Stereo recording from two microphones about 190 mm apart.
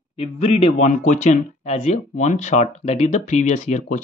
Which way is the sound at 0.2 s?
35° left (ahead or behind).